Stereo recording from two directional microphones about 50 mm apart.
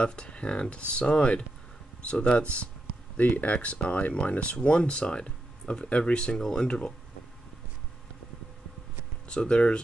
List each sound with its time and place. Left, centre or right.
0.0 s speech: left
9.3 s speech: left